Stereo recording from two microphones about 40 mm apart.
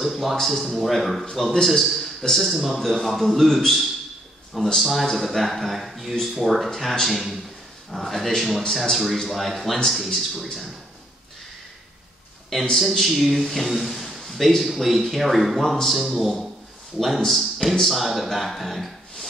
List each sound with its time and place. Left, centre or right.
0.0 s a man's voice: centre
8.6 s speech: centre
8.9 s a man's voice: centre
12.7 s a man's voice: centre